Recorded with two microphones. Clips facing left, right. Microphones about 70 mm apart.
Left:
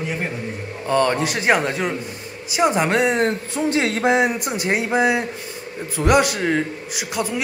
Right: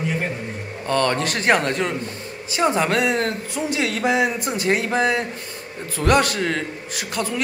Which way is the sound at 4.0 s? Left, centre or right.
Left.